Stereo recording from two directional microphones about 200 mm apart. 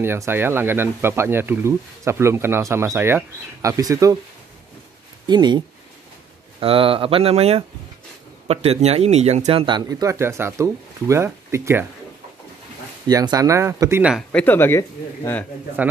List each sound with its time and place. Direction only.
0.0 s speech: 10° right (ahead or behind)
5.2 s speech: 20° right (ahead or behind)
6.6 s speech: 25° right (ahead or behind)
13.0 s speech: 20° right (ahead or behind)
14.1 s a man's voice: 5° left (ahead or behind)